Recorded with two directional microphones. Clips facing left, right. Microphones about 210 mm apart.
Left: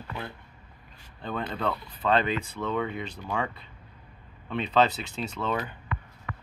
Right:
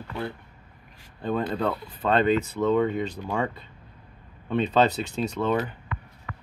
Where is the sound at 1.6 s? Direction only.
5° right (ahead or behind).